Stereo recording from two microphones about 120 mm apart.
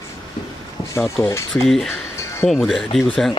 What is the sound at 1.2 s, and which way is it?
Speech, 25° left (ahead or behind).